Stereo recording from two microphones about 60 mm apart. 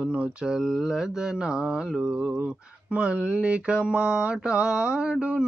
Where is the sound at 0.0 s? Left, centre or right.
Centre.